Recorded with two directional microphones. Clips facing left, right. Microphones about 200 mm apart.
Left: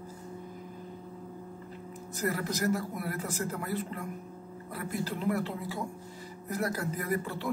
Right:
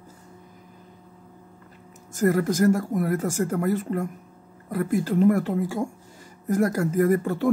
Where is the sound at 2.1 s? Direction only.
45° right (ahead or behind).